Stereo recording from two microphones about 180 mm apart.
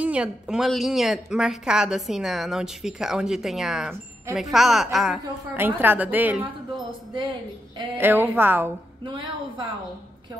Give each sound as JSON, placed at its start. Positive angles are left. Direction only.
{"t": 0.0, "sound": "a woman's voice", "side_deg": -5}
{"t": 5.5, "sound": "a woman's voice", "side_deg": -10}
{"t": 7.2, "sound": "a woman's voice", "side_deg": -25}
{"t": 8.0, "sound": "a woman's voice", "side_deg": -10}
{"t": 9.0, "sound": "a woman's voice", "side_deg": -25}